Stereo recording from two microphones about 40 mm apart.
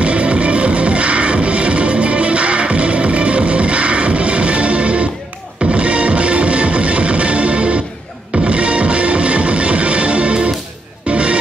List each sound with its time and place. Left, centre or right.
0.0 s music: right